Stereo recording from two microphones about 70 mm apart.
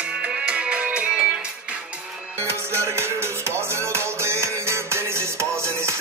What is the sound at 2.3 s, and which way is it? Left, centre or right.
Music, right.